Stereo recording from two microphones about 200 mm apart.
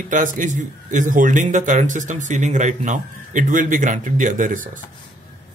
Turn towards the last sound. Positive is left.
turn(degrees=-40)  # may be behind; listen again after turning